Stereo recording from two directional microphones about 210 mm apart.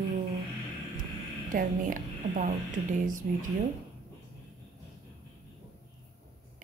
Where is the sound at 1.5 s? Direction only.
40° right (ahead or behind).